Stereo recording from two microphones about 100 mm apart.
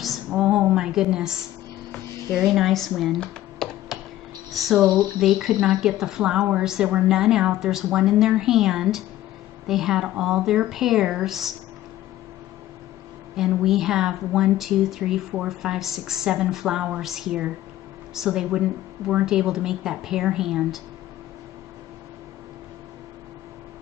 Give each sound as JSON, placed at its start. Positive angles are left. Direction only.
{"t": 0.0, "sound": "a sound", "side_deg": 0}
{"t": 2.3, "sound": "a woman's voice", "side_deg": -5}
{"t": 4.5, "sound": "speech", "side_deg": 0}
{"t": 4.8, "sound": "speech", "side_deg": -45}
{"t": 5.2, "sound": "a woman's voice", "side_deg": -5}
{"t": 13.4, "sound": "a woman's voice", "side_deg": -5}